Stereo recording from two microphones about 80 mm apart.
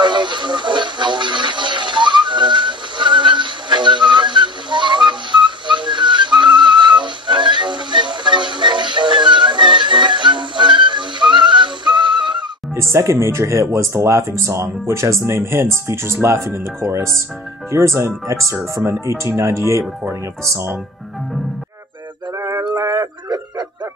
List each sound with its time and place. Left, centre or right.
0.0 s music: right
12.7 s speech: right
22.6 s a sound: right